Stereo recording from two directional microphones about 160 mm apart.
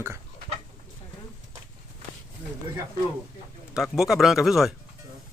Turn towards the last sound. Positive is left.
turn(degrees=0)  # may be behind; listen again after turning